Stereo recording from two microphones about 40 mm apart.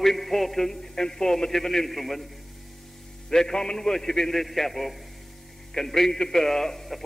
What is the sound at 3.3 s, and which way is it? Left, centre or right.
A man's voice, centre.